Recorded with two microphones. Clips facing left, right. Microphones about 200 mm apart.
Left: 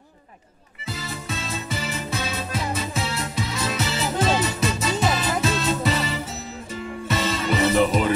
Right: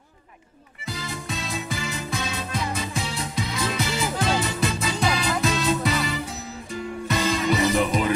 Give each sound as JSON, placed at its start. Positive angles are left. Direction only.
{"t": 0.8, "sound": "music", "side_deg": 0}